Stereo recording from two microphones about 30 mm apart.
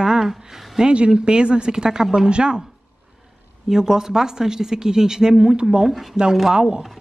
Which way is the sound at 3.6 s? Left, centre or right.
Centre.